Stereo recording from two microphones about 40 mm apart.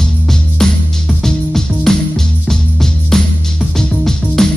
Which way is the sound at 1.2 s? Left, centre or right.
Centre.